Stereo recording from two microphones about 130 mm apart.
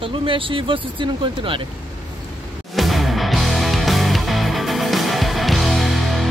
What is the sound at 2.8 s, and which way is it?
Music, centre (ahead or behind).